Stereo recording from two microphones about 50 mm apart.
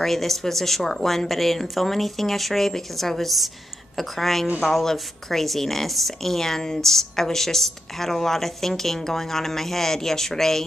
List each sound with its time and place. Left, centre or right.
0.0 s speech: centre